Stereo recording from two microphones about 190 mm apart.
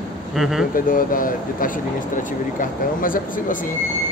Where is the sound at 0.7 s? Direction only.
45° left (ahead or behind).